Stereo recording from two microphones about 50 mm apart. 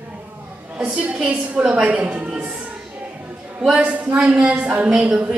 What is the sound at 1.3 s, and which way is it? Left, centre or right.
A woman's voice, right.